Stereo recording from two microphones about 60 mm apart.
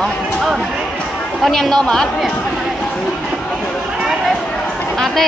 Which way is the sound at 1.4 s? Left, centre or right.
Centre.